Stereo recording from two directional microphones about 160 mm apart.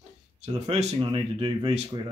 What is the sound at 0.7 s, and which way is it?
Speech, 40° right (ahead or behind).